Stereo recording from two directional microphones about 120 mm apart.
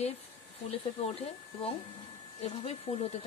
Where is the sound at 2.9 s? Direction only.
50° left (ahead or behind).